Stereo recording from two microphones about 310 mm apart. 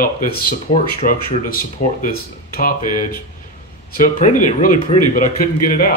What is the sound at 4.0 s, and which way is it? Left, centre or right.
Speech, left.